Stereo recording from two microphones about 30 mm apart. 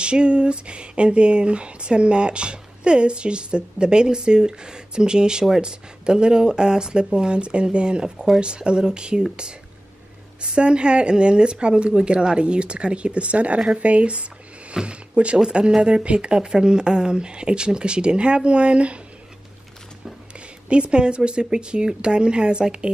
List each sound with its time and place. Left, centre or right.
0.0 s speech: right
10.4 s speech: right
14.7 s a sound: right
15.8 s speech: right
20.3 s speech: right